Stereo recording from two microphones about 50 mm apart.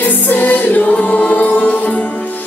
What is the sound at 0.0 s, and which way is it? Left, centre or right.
Music, left.